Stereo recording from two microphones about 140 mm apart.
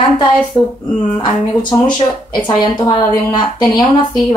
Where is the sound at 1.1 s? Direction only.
30° left (ahead or behind).